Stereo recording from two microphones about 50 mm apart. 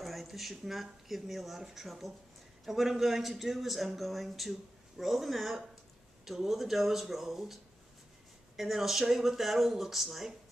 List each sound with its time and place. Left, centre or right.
0.0 s a man's voice: centre